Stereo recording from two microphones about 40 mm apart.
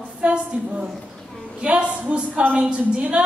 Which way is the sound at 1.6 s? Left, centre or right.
Right.